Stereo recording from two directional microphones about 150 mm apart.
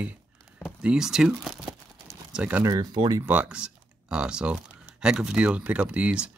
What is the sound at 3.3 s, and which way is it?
Speech, 10° right (ahead or behind).